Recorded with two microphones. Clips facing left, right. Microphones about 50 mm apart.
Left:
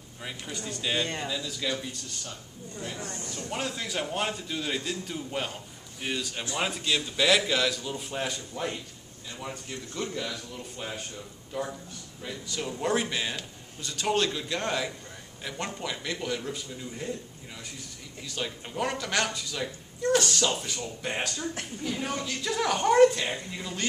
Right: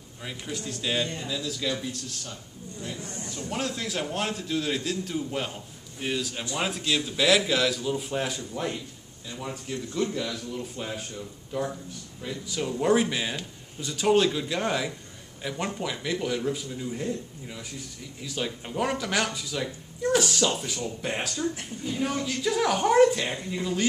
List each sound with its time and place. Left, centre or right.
0.2 s speech: centre
3.4 s speech: centre